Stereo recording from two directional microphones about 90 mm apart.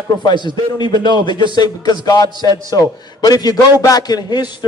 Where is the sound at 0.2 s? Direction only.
55° left (ahead or behind).